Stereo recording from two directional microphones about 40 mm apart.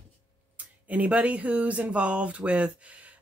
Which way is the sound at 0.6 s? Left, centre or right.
Right.